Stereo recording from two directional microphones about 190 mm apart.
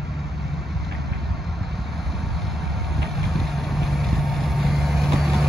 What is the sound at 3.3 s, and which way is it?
Vehicle, centre (ahead or behind).